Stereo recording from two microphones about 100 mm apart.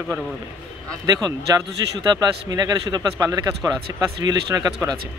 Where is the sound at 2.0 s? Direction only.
40° right (ahead or behind).